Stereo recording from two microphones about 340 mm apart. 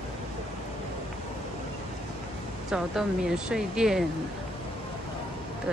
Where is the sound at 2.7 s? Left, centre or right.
Centre.